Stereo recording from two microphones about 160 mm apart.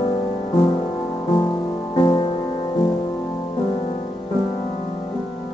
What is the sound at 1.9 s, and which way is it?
Music, 25° left (ahead or behind).